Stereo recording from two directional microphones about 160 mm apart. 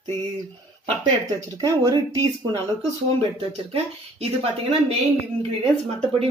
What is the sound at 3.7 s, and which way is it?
Speech, 40° right (ahead or behind).